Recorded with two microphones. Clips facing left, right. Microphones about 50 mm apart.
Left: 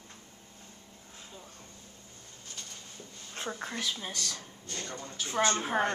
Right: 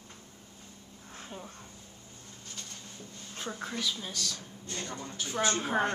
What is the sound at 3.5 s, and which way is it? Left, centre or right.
Speech, centre.